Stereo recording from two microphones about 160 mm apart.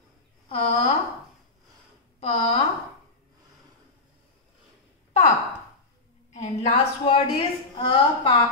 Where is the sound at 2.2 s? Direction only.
40° left (ahead or behind).